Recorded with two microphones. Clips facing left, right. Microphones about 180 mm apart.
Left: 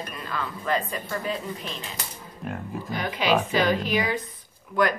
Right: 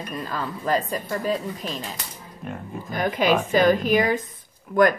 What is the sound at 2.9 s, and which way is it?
A woman's voice, 50° right (ahead or behind).